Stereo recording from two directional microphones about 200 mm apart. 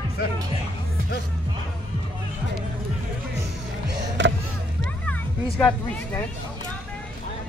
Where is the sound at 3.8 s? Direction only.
65° right (ahead or behind).